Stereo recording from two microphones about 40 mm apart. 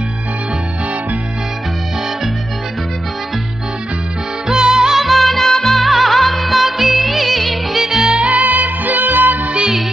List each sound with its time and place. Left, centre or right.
4.5 s music: centre
5.0 s music: centre
7.8 s music: centre
8.3 s music: right